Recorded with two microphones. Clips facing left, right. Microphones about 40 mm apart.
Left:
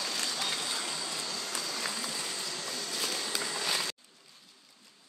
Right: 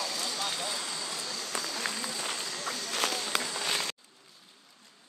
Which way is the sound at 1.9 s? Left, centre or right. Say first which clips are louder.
Right 1 dB; centre.